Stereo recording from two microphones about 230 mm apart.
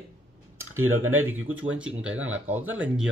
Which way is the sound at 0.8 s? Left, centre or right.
Right.